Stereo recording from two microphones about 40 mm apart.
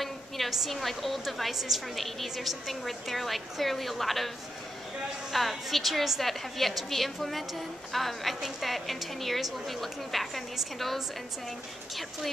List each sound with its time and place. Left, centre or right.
0.0 s a woman's voice: centre
5.3 s a woman's voice: centre
11.9 s a woman's voice: centre